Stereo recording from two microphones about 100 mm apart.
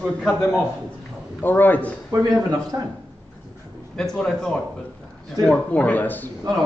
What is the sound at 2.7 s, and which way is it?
Speech, 40° right (ahead or behind).